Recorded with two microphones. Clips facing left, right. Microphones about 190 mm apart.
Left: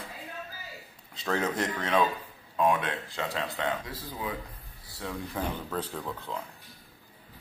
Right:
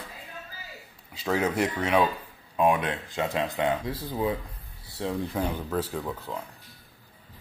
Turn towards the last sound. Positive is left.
turn(degrees=-10)  # may be behind; listen again after turning